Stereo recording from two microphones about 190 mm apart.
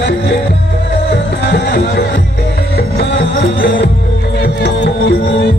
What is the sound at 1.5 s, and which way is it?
Music, 60° left (ahead or behind).